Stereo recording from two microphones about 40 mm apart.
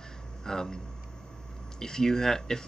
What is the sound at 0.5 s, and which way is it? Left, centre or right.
Speech, centre.